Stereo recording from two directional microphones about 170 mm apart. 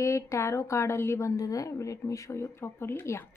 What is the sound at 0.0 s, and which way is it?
A woman's voice, 15° left (ahead or behind).